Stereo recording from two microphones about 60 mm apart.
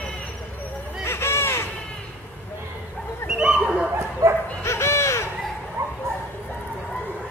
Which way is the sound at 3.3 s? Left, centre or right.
Centre.